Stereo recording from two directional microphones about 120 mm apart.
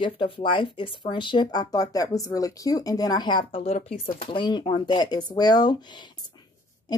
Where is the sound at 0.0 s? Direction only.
45° left (ahead or behind).